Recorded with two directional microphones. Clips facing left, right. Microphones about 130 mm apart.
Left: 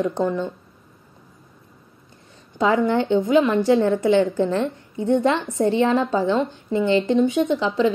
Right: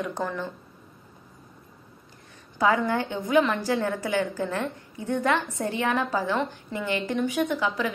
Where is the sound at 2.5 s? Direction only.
25° left (ahead or behind).